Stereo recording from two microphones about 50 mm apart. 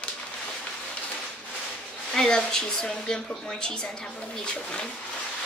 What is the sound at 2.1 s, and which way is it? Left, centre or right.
A woman's voice, centre.